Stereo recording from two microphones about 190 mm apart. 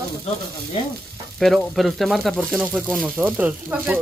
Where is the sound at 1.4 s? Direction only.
Centre (ahead or behind).